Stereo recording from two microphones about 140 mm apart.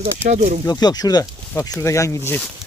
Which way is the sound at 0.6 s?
30° left (ahead or behind).